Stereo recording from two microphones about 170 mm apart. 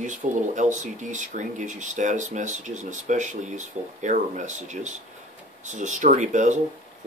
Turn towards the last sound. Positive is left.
turn(degrees=-45)  # may be behind; listen again after turning